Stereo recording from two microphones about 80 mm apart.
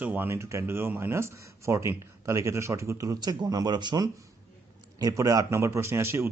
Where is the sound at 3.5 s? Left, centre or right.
Right.